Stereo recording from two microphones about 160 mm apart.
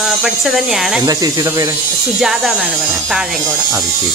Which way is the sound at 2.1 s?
5° right (ahead or behind).